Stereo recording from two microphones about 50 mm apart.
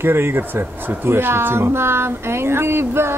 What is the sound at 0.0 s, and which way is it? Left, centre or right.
Speech, right.